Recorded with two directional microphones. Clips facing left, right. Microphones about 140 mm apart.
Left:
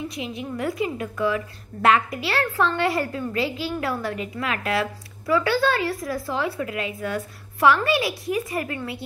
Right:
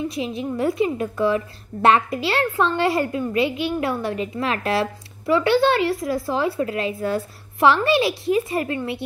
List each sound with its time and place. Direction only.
0.1 s a woman's voice: 25° right (ahead or behind)